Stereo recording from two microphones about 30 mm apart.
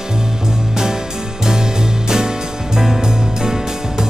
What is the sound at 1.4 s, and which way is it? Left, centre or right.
Music, right.